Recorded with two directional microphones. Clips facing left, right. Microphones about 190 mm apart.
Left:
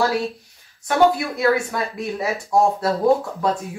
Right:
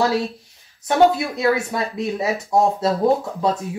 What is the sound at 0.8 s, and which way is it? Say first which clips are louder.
Speech: right 1 dB; 25° right (ahead or behind).